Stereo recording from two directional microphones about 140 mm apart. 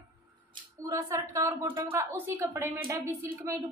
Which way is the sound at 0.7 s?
25° right (ahead or behind).